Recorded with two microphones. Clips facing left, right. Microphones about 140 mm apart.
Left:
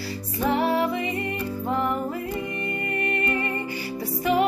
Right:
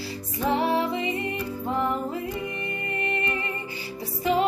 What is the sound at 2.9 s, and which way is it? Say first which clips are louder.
Music: left 2 dB; 25° right (ahead or behind).